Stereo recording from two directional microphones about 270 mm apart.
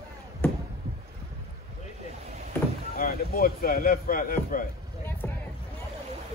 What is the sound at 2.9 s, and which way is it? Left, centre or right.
A man's voice, left.